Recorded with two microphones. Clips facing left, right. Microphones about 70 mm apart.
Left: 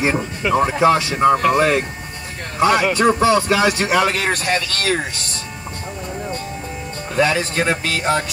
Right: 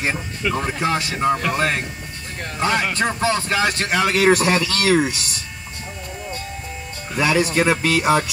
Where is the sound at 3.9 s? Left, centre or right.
Centre.